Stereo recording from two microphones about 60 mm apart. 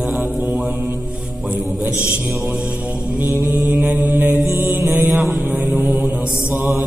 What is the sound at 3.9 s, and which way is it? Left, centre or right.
Mantra, right.